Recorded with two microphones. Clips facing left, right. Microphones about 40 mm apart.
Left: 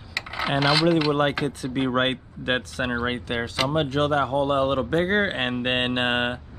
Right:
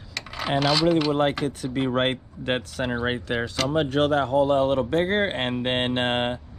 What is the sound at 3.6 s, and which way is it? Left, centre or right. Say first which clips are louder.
Speech: left 2 dB; centre.